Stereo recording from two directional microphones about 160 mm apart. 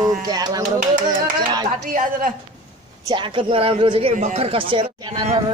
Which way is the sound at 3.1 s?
30° right (ahead or behind).